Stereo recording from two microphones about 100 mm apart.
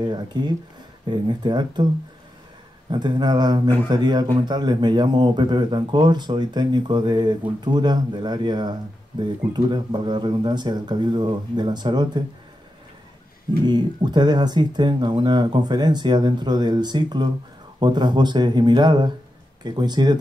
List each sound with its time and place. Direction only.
0.0 s speech: 45° right (ahead or behind)
2.9 s speech: 50° right (ahead or behind)
13.7 s speech: 45° right (ahead or behind)